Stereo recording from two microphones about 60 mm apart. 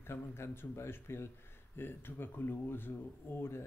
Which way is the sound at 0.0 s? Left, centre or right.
Left.